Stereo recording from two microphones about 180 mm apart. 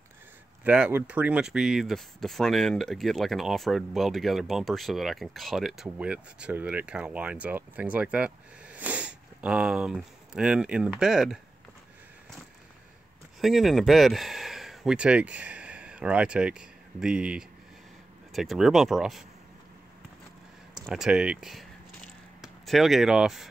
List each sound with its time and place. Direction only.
0.7 s speech: 10° right (ahead or behind)
13.4 s speech: centre (ahead or behind)
20.8 s a sound: centre (ahead or behind)